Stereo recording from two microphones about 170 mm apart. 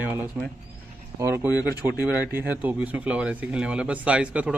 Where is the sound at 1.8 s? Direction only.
10° right (ahead or behind).